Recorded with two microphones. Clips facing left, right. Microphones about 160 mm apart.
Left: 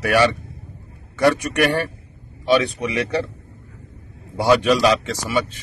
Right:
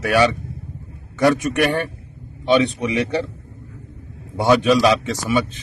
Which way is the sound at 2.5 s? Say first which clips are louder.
Right 1 dB; 25° right (ahead or behind).